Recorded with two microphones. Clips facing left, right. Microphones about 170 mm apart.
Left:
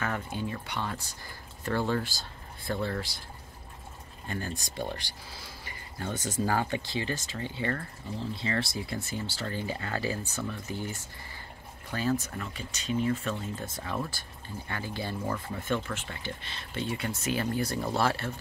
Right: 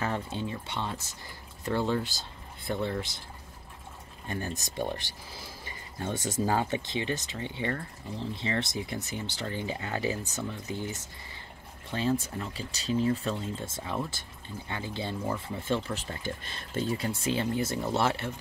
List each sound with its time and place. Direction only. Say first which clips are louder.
0.0 s speech: right 1 dB; 25° right (ahead or behind)
4.3 s speech: right 1 dB; 20° right (ahead or behind)